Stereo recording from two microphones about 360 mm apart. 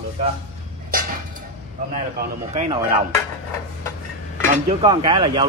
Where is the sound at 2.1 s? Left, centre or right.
Centre.